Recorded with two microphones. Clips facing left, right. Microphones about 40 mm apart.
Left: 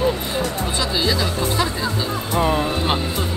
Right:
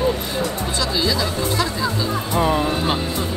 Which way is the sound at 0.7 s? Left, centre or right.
Left.